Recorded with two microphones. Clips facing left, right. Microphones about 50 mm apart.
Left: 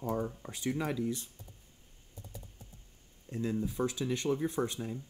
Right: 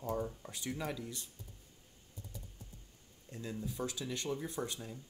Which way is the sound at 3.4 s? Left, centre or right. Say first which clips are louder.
Left 7 dB; left.